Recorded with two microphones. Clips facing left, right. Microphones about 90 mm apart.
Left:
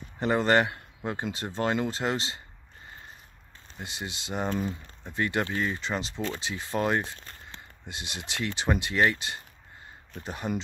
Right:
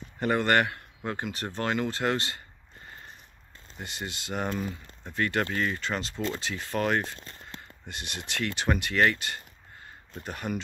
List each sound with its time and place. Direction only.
0.2 s speech: 20° left (ahead or behind)
3.8 s speech: 20° left (ahead or behind)